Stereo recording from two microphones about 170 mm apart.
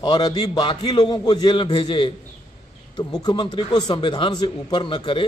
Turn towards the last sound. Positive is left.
turn(degrees=30)  # may be behind; listen again after turning